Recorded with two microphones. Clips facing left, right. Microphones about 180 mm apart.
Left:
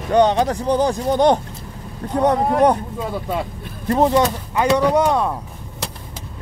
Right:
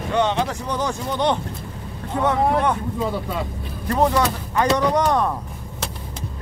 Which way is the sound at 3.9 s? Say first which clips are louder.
Left 3 dB; 20° left (ahead or behind).